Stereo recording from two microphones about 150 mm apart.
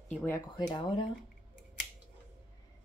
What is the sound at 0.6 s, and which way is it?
Speech, 30° left (ahead or behind).